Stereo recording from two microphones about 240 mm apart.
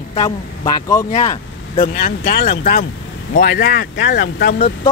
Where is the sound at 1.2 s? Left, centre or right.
Centre.